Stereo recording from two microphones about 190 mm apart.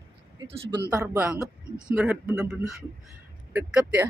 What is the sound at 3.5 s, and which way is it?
Speech, 5° right (ahead or behind).